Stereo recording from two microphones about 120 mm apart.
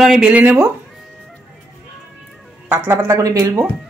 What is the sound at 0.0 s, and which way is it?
Speech, 5° right (ahead or behind).